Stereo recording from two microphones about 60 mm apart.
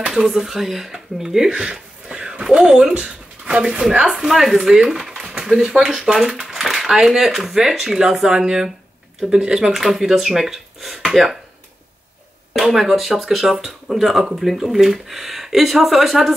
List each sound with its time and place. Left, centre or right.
0.1 s speech: centre
4.0 s speech: centre
12.5 s speech: centre